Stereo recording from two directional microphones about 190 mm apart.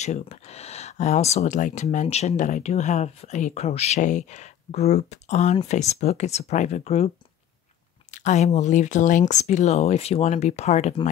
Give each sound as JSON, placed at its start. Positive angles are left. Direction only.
{"t": 0.0, "sound": "speech", "side_deg": 35}
{"t": 8.1, "sound": "speech", "side_deg": 40}